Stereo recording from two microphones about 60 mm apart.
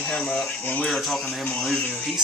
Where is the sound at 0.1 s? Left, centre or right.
Left.